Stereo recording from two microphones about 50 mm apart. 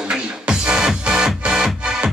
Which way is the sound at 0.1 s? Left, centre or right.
Centre.